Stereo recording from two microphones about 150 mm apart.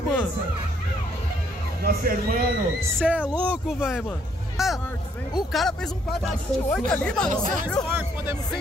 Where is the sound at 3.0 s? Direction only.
5° right (ahead or behind).